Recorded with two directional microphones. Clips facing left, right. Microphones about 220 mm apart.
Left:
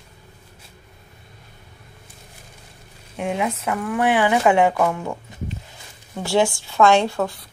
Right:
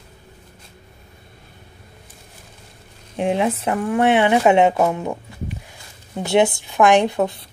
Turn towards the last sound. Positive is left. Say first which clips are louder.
# right 3 dB
turn(degrees=-20)  # may be behind; listen again after turning